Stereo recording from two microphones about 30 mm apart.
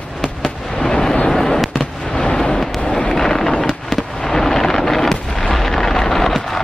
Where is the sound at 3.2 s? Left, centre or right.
Centre.